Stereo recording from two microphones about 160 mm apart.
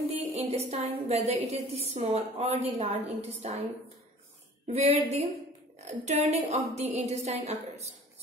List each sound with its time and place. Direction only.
0.4 s a woman's voice: 40° right (ahead or behind)
4.6 s a woman's voice: 40° right (ahead or behind)